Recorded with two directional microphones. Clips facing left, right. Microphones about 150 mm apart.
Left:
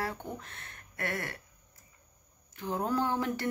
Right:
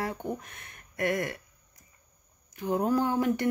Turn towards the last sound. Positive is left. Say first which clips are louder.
# right 5 dB
turn(degrees=-15)  # may be behind; listen again after turning